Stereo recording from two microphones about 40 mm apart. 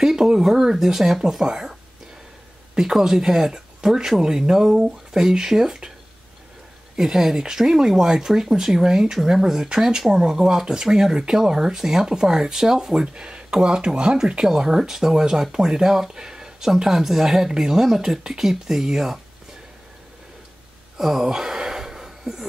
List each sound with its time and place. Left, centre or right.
0.0 s speech: centre
2.8 s speech: centre
7.0 s speech: centre
21.0 s gasp: centre